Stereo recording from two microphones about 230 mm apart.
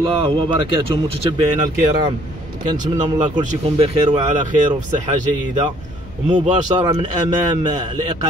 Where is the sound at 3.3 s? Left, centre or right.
Right.